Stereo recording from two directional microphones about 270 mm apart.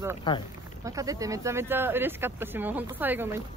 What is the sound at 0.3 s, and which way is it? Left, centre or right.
Speech, centre.